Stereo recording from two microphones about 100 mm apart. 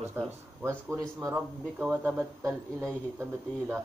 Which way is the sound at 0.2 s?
20° right (ahead or behind).